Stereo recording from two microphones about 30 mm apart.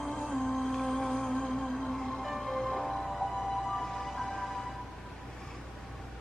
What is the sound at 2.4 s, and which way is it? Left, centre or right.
Music, centre.